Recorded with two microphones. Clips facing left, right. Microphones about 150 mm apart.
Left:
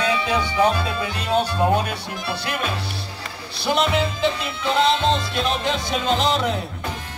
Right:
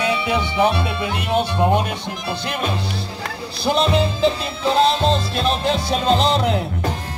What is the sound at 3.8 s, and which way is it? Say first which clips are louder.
Music: right 3 dB; 30° right (ahead or behind).